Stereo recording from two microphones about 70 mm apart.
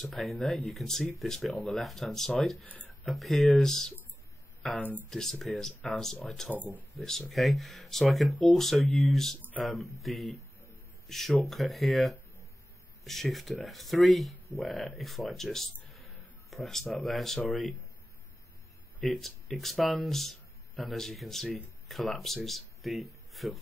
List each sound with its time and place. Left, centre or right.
0.0 s speech: centre
4.7 s speech: left
5.1 s speech: centre
18.9 s speech: centre